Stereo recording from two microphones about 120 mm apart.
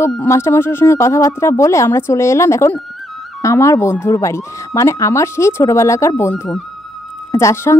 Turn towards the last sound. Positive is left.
turn(degrees=25)  # may be behind; listen again after turning